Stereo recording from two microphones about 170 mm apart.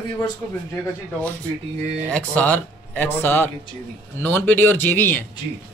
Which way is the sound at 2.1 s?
10° left (ahead or behind).